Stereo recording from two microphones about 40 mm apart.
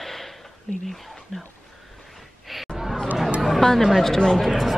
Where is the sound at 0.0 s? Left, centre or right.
Centre.